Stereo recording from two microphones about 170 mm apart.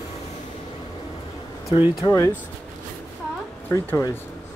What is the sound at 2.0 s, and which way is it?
Speech, 20° left (ahead or behind).